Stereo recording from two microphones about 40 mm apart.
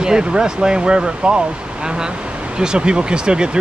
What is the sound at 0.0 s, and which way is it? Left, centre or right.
Speech, centre.